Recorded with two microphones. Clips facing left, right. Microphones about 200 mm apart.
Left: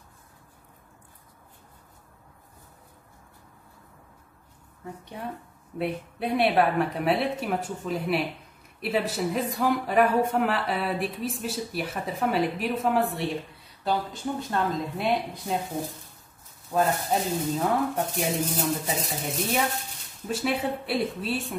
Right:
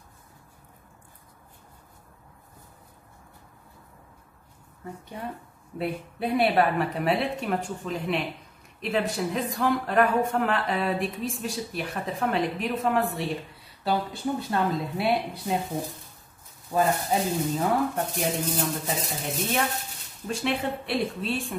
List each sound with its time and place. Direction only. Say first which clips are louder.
4.8 s speech: even; centre (ahead or behind)
16.7 s speech: right 1 dB; centre (ahead or behind)